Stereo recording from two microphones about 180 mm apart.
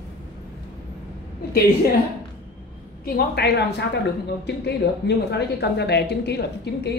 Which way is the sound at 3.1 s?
60° left (ahead or behind).